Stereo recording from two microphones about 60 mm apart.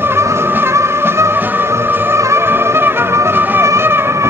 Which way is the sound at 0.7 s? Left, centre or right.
Right.